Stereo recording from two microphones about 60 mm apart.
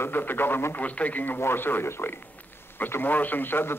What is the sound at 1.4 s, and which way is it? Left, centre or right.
Speech, left.